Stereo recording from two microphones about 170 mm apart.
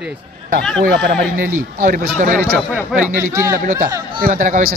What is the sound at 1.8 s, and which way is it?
Speech, 50° right (ahead or behind).